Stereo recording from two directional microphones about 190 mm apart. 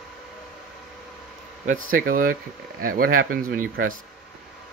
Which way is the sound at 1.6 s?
45° right (ahead or behind).